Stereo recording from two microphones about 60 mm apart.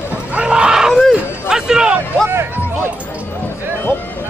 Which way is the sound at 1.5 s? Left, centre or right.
Centre.